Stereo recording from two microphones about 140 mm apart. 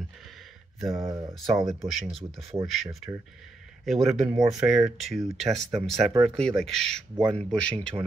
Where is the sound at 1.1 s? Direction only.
20° right (ahead or behind).